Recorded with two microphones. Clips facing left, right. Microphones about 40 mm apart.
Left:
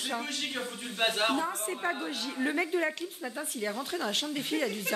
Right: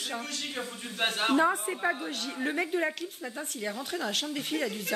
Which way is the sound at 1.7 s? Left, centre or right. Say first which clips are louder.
Right 2 dB; right.